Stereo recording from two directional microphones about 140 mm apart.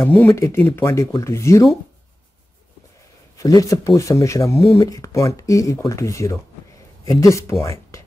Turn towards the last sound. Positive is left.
turn(degrees=20)  # may be behind; listen again after turning